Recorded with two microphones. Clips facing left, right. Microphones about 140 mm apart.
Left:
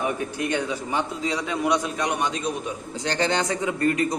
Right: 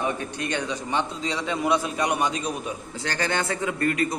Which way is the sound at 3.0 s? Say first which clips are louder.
Left 3 dB; 20° left (ahead or behind).